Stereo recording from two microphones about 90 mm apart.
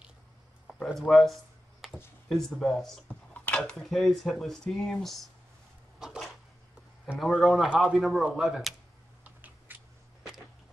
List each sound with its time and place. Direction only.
0.9 s a sound: centre (ahead or behind)
2.2 s speech: 5° left (ahead or behind)
3.1 s speech: 15° left (ahead or behind)
5.9 s a sound: 5° right (ahead or behind)
7.2 s speech: centre (ahead or behind)
9.2 s typing: 20° right (ahead or behind)